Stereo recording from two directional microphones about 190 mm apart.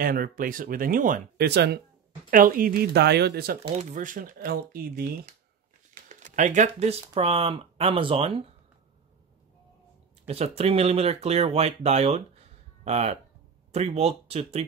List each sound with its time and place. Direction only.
0.0 s speech: 50° right (ahead or behind)
1.5 s speech: 60° right (ahead or behind)
2.3 s speech: 45° right (ahead or behind)
3.6 s speech: 40° right (ahead or behind)
10.2 s speech: 35° right (ahead or behind)